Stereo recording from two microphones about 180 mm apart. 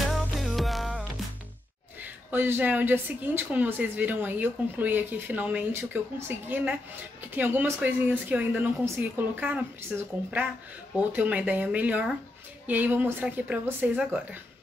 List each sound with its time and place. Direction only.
0.1 s music: centre (ahead or behind)
2.0 s speech: 10° right (ahead or behind)
11.0 s speech: 10° right (ahead or behind)